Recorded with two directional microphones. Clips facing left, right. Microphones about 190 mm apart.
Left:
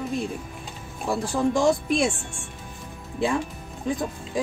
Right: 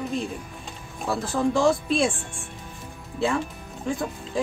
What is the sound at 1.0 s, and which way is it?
A woman's voice, 15° left (ahead or behind).